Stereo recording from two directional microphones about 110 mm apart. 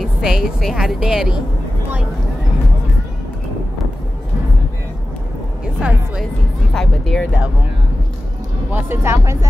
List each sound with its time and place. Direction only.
0.0 s speech: 5° right (ahead or behind)
5.8 s a woman's voice: 10° right (ahead or behind)
6.7 s speech: 5° left (ahead or behind)
8.7 s speech: 20° right (ahead or behind)